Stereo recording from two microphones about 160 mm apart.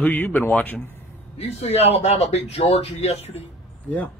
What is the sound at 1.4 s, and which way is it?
Speech, 40° left (ahead or behind).